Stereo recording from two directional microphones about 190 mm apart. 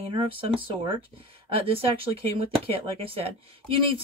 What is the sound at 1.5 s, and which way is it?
Speech, 30° right (ahead or behind).